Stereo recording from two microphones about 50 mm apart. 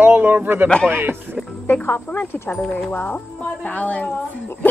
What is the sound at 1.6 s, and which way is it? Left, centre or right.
Speech, left.